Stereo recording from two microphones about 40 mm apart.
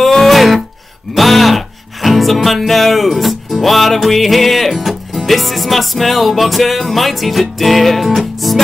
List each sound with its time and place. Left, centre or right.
0.0 s music: centre
1.1 s a sound: centre
2.0 s music: centre